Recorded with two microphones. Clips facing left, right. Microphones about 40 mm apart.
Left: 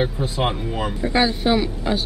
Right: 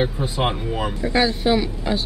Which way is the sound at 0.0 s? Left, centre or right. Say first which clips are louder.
Even; centre.